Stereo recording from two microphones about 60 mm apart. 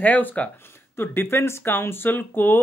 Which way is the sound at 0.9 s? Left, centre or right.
Left.